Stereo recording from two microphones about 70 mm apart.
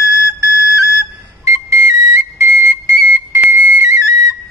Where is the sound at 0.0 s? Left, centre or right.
Right.